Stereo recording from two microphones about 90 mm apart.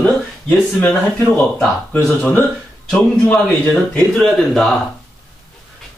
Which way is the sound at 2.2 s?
15° left (ahead or behind).